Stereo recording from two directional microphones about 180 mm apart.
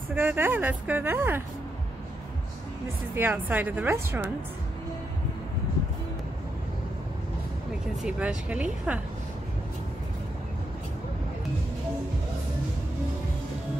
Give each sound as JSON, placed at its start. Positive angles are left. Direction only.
{"t": 0.1, "sound": "speech", "side_deg": -10}
{"t": 3.2, "sound": "speech", "side_deg": -10}
{"t": 8.0, "sound": "speech", "side_deg": -5}